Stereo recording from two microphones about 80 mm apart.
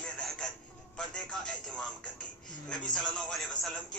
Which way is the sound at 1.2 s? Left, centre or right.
Centre.